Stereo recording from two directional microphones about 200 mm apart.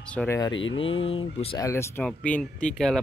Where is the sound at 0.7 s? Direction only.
25° left (ahead or behind).